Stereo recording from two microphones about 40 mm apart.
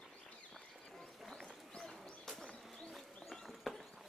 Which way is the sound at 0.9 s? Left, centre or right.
Centre.